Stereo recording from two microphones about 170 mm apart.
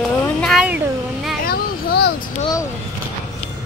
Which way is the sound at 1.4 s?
65° left (ahead or behind).